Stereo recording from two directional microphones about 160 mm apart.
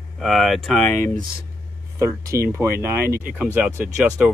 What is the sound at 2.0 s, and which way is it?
Speech, 20° right (ahead or behind).